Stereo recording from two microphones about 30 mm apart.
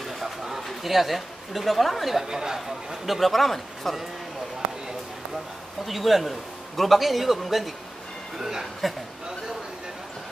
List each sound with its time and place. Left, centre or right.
0.0 s a sound: centre
2.2 s speech: centre
3.1 s speech: centre
5.9 s speech: centre
8.4 s speech: centre